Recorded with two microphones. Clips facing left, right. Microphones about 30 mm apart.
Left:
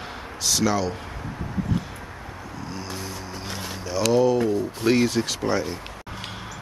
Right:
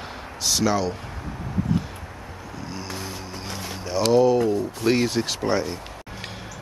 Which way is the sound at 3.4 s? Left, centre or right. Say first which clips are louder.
Even; centre.